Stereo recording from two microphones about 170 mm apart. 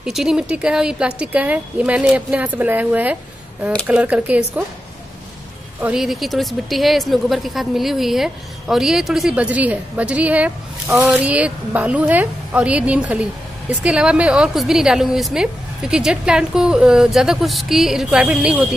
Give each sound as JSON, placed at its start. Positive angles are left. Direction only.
{"t": 0.0, "sound": "speech", "side_deg": -5}
{"t": 5.8, "sound": "speech", "side_deg": -5}